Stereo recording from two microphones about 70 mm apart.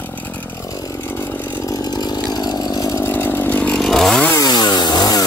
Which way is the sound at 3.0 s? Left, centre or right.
Left.